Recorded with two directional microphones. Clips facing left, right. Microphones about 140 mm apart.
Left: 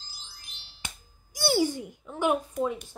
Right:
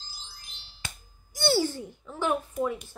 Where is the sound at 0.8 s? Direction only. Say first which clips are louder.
Right 1 dB; 15° left (ahead or behind).